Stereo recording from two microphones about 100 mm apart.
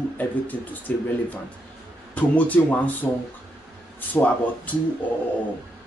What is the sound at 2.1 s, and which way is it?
Speech, 15° left (ahead or behind).